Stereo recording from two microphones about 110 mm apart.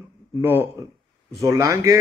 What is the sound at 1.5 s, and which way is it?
Speech, 30° right (ahead or behind).